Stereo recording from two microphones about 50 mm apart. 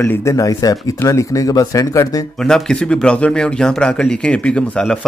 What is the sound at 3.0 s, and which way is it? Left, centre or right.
A man's voice, left.